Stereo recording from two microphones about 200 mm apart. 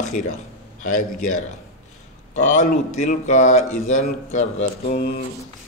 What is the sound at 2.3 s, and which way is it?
A man's voice, 35° left (ahead or behind).